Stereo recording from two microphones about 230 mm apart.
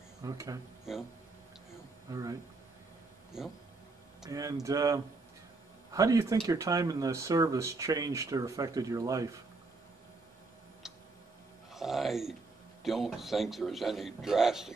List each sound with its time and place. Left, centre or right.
0.2 s speech: centre
0.9 s a man's voice: centre
2.1 s speech: centre
3.3 s a man's voice: centre
4.3 s speech: centre
10.8 s tick-tock: centre
11.7 s a man's voice: centre